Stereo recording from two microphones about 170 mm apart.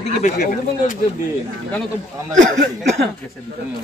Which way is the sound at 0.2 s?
50° left (ahead or behind).